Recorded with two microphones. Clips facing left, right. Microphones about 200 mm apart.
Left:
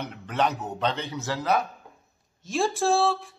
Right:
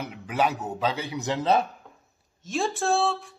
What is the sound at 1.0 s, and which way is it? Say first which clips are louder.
Speech: right 3 dB; 15° right (ahead or behind).